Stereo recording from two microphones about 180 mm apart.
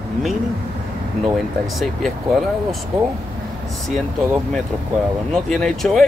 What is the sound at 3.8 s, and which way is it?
Speech, centre (ahead or behind).